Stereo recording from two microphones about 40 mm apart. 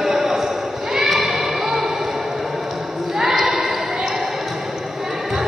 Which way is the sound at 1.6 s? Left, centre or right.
Centre.